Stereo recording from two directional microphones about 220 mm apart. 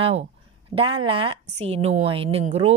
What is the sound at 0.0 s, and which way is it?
A woman's voice, 25° right (ahead or behind).